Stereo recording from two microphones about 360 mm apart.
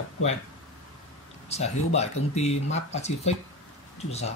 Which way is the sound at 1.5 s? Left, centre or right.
Centre.